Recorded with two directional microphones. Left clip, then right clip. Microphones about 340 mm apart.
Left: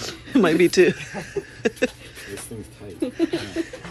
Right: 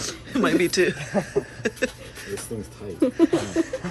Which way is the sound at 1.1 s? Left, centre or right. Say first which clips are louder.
Right 5 dB; right.